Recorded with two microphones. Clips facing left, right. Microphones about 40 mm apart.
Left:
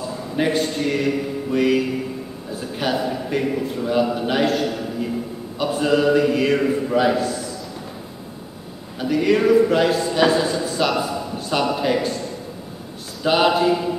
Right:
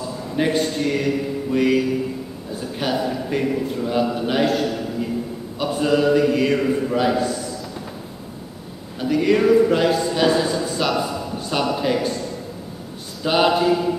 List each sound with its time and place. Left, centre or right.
0.4 s a man's voice: centre
9.0 s a man's voice: centre
13.2 s a man's voice: centre